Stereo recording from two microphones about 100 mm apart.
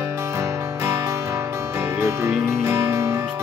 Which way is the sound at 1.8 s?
25° right (ahead or behind).